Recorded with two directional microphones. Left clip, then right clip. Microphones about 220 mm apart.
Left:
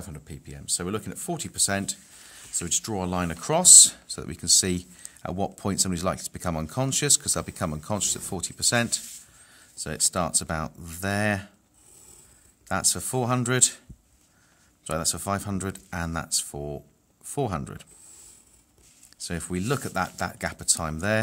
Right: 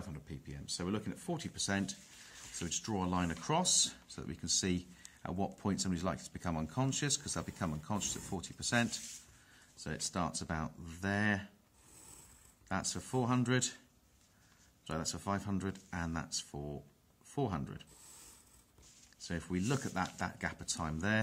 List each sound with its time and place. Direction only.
0.1 s speech: 45° left (ahead or behind)
12.6 s speech: 45° left (ahead or behind)
14.9 s speech: 45° left (ahead or behind)
19.1 s speech: 45° left (ahead or behind)